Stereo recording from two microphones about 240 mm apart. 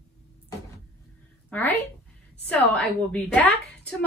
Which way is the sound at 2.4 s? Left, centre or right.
Centre.